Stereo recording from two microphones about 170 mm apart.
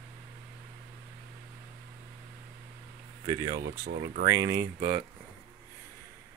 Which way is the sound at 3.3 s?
20° right (ahead or behind).